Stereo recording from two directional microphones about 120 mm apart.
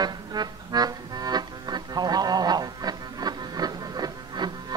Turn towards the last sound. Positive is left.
turn(degrees=-35)  # may be behind; listen again after turning